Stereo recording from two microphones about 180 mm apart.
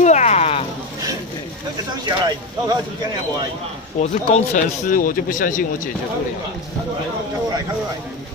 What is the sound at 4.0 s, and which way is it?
Speech, 40° left (ahead or behind).